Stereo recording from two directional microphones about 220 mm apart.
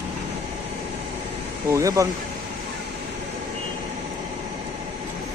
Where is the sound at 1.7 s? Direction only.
15° right (ahead or behind).